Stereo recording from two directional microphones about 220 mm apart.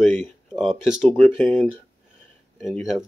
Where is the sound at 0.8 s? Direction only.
5° left (ahead or behind).